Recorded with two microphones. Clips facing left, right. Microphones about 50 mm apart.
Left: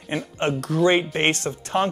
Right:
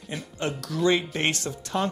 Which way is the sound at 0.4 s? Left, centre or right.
Left.